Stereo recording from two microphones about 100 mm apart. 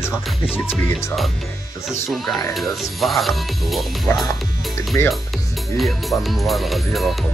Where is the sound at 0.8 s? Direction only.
25° left (ahead or behind).